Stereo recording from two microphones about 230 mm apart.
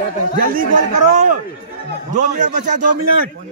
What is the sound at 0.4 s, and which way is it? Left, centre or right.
Speech, right.